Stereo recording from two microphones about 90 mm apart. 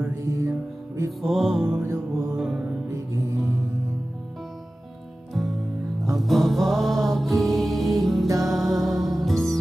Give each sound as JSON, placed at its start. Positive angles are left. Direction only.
{"t": 0.2, "sound": "music", "side_deg": -35}
{"t": 1.2, "sound": "music", "side_deg": 5}
{"t": 1.8, "sound": "music", "side_deg": -30}
{"t": 2.2, "sound": "music", "side_deg": 0}
{"t": 2.9, "sound": "music", "side_deg": -35}
{"t": 6.1, "sound": "music", "side_deg": 0}